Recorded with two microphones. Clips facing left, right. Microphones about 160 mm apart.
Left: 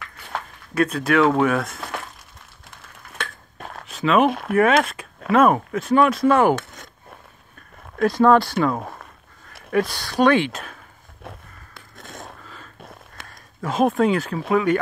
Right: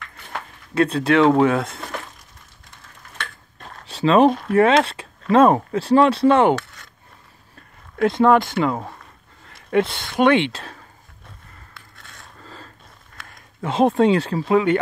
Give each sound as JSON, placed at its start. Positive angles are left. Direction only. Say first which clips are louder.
{"t": 0.7, "sound": "speech", "louder": "right 2 dB", "side_deg": -30}
{"t": 3.8, "sound": "a sound", "louder": "right 3 dB", "side_deg": -30}
{"t": 4.5, "sound": "speech", "louder": "right 2 dB", "side_deg": -30}
{"t": 8.0, "sound": "speech", "louder": "even", "side_deg": -20}
{"t": 11.7, "sound": "a sound", "louder": "left 11 dB", "side_deg": 45}
{"t": 13.6, "sound": "speech", "louder": "right 2 dB", "side_deg": -30}